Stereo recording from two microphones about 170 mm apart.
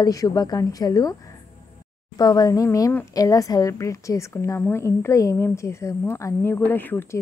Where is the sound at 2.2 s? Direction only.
25° left (ahead or behind).